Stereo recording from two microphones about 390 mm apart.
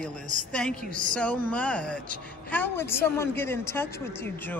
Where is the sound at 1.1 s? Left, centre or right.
Centre.